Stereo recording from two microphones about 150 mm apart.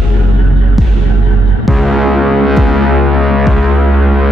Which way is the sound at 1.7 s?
Centre (ahead or behind).